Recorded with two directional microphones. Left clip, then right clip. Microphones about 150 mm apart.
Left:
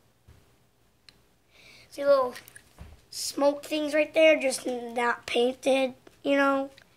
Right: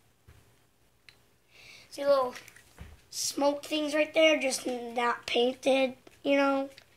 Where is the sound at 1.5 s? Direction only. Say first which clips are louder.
Left 1 dB; 10° left (ahead or behind).